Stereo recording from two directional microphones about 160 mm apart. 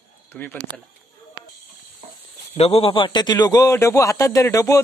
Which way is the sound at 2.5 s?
35° left (ahead or behind).